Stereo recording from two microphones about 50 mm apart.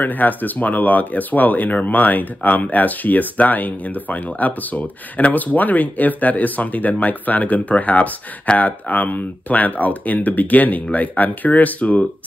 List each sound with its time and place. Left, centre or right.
0.0 s speech: left